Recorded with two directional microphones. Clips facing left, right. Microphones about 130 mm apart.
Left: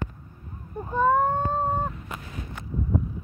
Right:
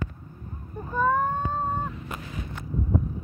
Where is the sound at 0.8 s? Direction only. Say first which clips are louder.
Left 2 dB; 25° left (ahead or behind).